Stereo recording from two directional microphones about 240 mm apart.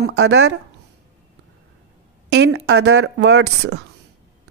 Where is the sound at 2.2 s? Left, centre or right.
Right.